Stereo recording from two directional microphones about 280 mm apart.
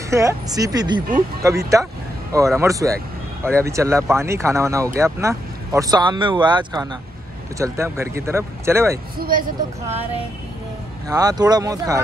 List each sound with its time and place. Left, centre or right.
0.1 s speech: centre
9.2 s speech: right
11.1 s speech: centre